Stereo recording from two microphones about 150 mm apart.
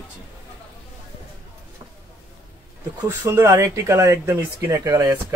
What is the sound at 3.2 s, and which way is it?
Speech, 20° right (ahead or behind).